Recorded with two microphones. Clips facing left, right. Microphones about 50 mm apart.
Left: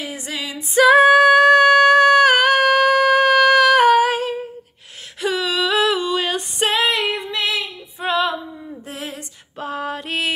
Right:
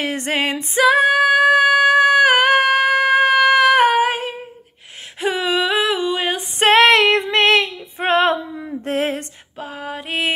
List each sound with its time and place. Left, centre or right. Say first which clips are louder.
0.0 s music: right 8 dB; right
0.8 s female singing: left 3 dB; centre
6.6 s female singing: right 8 dB; right
8.0 s female singing: right 4 dB; right
8.8 s a sound: right 12 dB; right
9.6 s female singing: left 3 dB; centre